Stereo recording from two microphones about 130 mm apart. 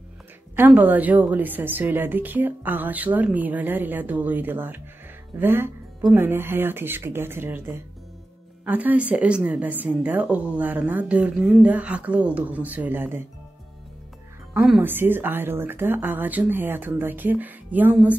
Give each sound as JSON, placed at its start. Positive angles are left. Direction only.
{"t": 0.6, "sound": "speech", "side_deg": -15}
{"t": 14.8, "sound": "speech", "side_deg": -15}